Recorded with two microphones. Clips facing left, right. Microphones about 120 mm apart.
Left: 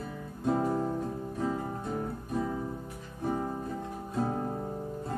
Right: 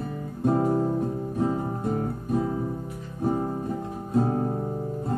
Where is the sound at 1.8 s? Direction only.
50° right (ahead or behind).